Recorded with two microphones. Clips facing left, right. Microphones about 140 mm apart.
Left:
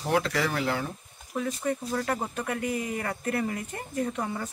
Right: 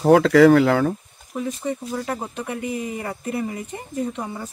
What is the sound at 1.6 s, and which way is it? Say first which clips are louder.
Speech: right 2 dB; 5° right (ahead or behind).